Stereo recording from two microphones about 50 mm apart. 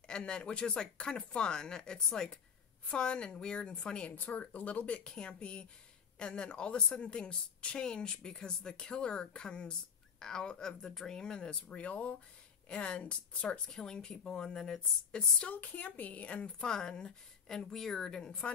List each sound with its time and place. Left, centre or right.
0.1 s a woman's voice: centre
5.0 s a woman's voice: centre
10.7 s speech: centre
11.1 s a woman's voice: centre
13.7 s speech: centre
15.5 s a woman's voice: left
16.4 s speech: centre